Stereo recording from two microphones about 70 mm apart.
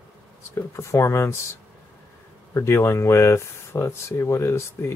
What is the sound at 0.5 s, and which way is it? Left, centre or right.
Speech, left.